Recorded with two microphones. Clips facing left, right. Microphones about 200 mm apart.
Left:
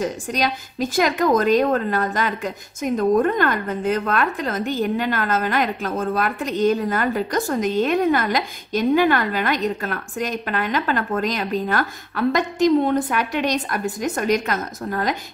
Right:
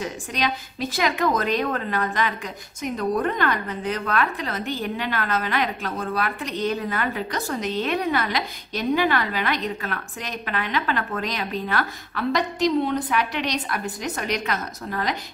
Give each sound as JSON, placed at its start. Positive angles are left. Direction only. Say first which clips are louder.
{"t": 0.0, "sound": "a woman's voice", "louder": "left 4 dB", "side_deg": 45}